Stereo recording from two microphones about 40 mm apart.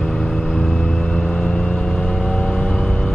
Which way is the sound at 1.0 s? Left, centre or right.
Left.